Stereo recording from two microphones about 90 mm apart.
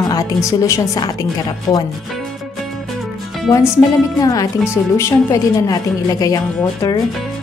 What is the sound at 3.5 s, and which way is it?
Speech, 40° left (ahead or behind).